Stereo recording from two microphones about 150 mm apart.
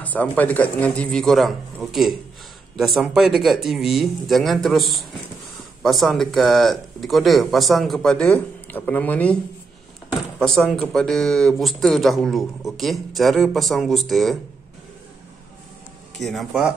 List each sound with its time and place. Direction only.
0.0 s speech: 10° left (ahead or behind)
10.4 s speech: 5° left (ahead or behind)
16.2 s speech: centre (ahead or behind)